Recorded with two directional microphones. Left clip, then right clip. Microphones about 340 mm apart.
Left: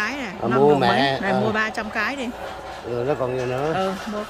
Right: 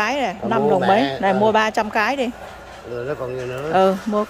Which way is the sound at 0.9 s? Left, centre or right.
Left.